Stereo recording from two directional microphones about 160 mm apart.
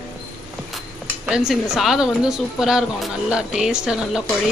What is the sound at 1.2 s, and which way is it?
Speech, 5° right (ahead or behind).